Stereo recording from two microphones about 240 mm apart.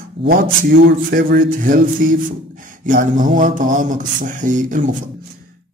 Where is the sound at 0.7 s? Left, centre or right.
Right.